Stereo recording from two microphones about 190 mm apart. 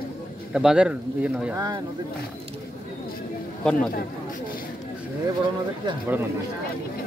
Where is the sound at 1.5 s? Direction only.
20° right (ahead or behind).